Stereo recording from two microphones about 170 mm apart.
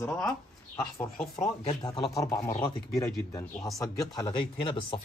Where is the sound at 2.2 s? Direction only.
20° left (ahead or behind).